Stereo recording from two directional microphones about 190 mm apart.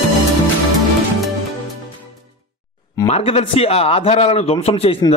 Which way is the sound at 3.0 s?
35° left (ahead or behind).